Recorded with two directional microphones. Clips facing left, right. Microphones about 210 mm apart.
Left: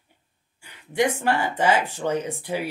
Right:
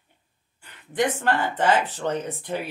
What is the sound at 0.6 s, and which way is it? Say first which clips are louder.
Speech: left 2 dB; 10° left (ahead or behind).